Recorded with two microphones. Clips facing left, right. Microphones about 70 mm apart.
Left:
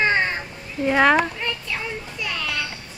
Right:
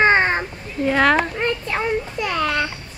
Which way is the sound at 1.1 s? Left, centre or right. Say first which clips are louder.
Right 2 dB; right.